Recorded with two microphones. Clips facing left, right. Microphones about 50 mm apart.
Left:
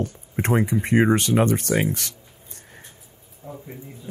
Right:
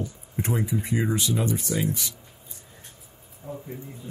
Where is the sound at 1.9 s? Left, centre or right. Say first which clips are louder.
Left 2 dB; left.